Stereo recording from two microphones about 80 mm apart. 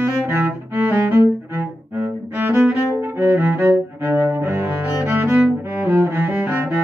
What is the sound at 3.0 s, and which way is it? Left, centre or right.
Music, right.